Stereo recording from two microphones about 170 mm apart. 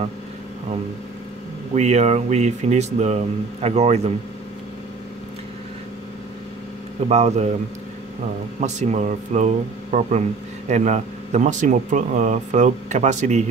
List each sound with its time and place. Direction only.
1.8 s speech: 40° right (ahead or behind)
7.1 s speech: 40° right (ahead or behind)
8.5 s speech: 45° right (ahead or behind)